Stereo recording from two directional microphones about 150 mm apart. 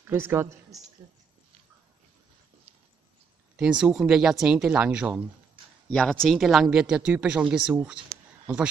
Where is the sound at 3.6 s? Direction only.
5° right (ahead or behind).